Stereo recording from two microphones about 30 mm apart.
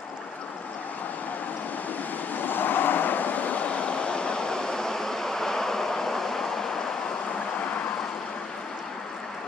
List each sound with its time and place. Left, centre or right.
2.3 s vehicle: left
3.6 s vehicle: left; by 6.8 s centre